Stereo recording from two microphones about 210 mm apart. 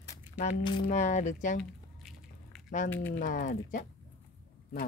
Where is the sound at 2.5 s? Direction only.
Centre (ahead or behind).